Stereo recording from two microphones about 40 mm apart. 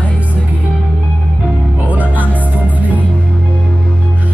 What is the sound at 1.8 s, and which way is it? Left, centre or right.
Music, right.